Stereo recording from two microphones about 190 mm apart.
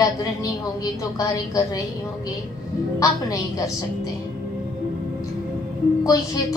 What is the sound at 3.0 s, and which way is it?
Speech, 15° left (ahead or behind).